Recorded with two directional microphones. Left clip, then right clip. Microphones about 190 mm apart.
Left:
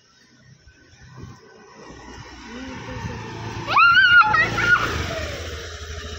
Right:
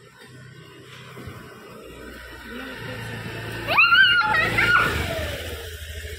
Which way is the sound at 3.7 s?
50° left (ahead or behind).